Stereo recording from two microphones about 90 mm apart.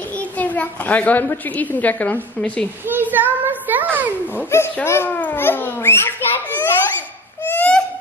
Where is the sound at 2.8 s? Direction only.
20° right (ahead or behind).